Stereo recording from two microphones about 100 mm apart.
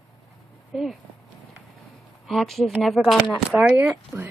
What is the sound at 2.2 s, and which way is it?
Speech, centre (ahead or behind).